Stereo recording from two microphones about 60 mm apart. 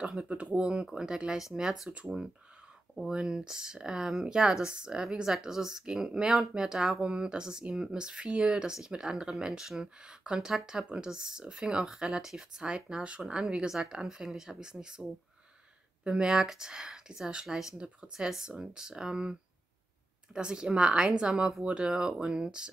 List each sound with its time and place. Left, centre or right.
0.0 s speech: centre
3.1 s speech: centre
20.3 s speech: centre